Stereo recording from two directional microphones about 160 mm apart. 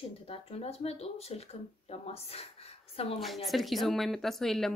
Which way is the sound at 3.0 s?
40° left (ahead or behind).